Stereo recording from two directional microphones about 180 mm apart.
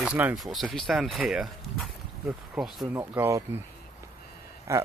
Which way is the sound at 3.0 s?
15° right (ahead or behind).